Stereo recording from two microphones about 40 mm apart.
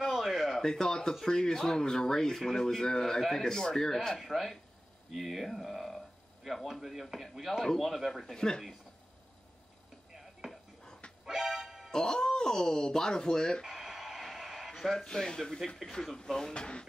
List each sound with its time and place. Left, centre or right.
0.0 s a sound: centre
0.6 s speech: centre
4.2 s speech: centre
8.4 s speech: centre
10.1 s chopping: centre
11.2 s music: centre
11.9 s speech: centre
13.7 s a sound: centre
14.8 s speech: centre; by 16.8 s left